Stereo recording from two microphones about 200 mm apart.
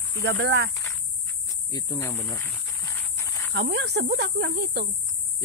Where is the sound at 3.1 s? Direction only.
10° left (ahead or behind).